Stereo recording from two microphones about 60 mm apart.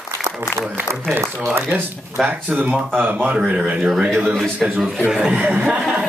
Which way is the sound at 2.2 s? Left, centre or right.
Right.